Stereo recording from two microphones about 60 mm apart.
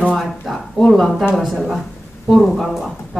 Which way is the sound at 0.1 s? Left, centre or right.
Centre.